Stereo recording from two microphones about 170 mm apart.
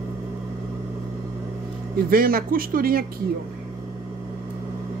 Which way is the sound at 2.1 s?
60° right (ahead or behind).